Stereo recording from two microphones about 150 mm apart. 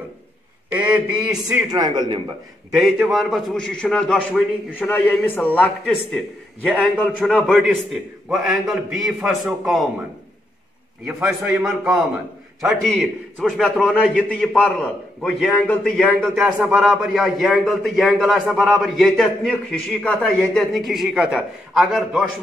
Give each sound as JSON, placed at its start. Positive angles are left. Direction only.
{"t": 0.7, "sound": "a man's voice", "side_deg": -10}
{"t": 1.7, "sound": "speech", "side_deg": -25}
{"t": 3.1, "sound": "a man's voice", "side_deg": 0}
{"t": 11.2, "sound": "a man's voice", "side_deg": -5}
{"t": 13.4, "sound": "a man's voice", "side_deg": 0}
{"t": 16.4, "sound": "a man's voice", "side_deg": -5}